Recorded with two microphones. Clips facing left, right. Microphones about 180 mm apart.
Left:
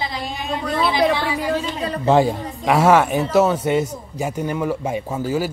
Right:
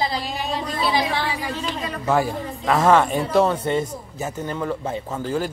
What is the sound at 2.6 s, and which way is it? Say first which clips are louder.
A man's voice: left 2 dB; 10° left (ahead or behind).